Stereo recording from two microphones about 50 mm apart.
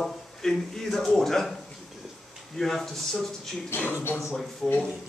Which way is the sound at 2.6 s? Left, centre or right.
Centre.